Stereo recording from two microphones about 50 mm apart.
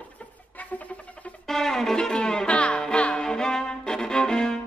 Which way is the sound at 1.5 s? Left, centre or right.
Centre.